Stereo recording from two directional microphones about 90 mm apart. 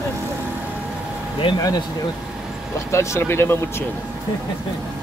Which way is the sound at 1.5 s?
75° left (ahead or behind).